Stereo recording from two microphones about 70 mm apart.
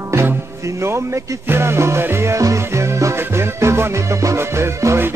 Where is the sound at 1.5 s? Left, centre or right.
Right.